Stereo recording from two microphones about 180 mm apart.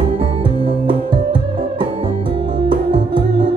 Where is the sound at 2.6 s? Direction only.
30° right (ahead or behind).